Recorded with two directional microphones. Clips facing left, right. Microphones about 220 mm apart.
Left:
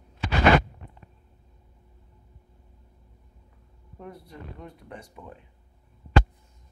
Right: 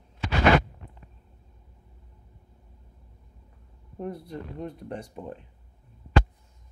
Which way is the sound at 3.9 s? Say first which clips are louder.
Right 8 dB; 35° right (ahead or behind).